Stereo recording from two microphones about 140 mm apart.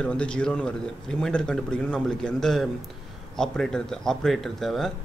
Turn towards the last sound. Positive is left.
turn(degrees=0)  # may be behind; listen again after turning